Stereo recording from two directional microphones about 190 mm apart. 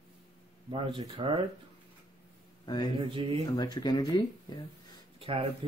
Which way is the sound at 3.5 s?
20° left (ahead or behind).